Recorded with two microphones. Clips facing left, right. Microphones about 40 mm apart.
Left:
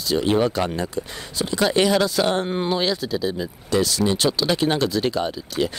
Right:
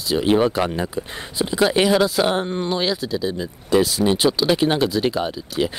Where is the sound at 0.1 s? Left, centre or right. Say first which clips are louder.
Right 2 dB; centre.